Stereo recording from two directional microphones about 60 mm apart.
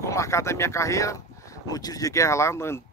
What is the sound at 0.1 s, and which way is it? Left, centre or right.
Speech, left.